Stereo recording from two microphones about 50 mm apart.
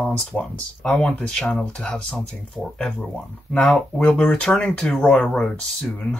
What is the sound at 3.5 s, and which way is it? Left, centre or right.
Speech, left.